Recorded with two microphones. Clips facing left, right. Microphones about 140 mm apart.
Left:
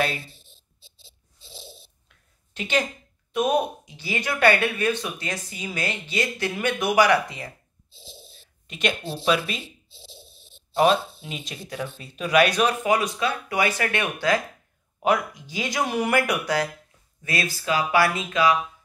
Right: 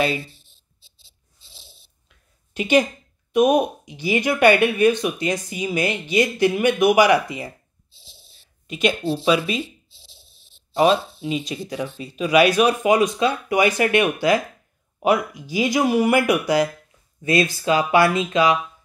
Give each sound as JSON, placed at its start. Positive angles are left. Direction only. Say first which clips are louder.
{"t": 2.5, "sound": "a woman's voice", "louder": "right 7 dB", "side_deg": -15}
{"t": 8.6, "sound": "speech", "louder": "right 6 dB", "side_deg": -5}
{"t": 10.8, "sound": "speech", "louder": "right 2 dB", "side_deg": 0}
{"t": 12.8, "sound": "speech", "louder": "right 5 dB", "side_deg": -20}